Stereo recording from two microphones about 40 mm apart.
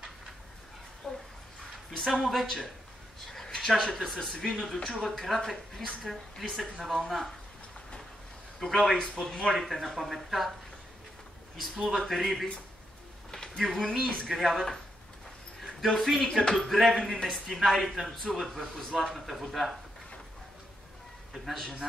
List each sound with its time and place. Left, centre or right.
1.0 s a sound: centre
2.1 s a woman's voice: centre
3.3 s a sound: centre
4.1 s a woman's voice: centre
8.5 s a woman's voice: centre
11.6 s a woman's voice: centre
13.3 s a sound: centre
13.7 s a woman's voice: centre
15.8 s a woman's voice: centre
17.6 s a woman's voice: centre
21.3 s a man's voice: centre